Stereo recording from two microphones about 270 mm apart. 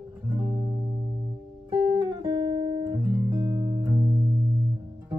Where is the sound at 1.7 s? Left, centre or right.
Centre.